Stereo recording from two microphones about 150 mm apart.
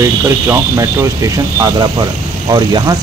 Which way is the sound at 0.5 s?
20° right (ahead or behind).